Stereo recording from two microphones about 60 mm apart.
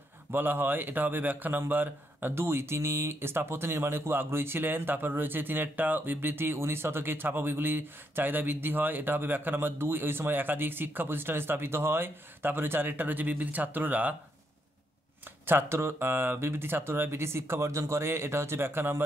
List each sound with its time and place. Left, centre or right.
0.3 s speech: right
15.4 s speech: right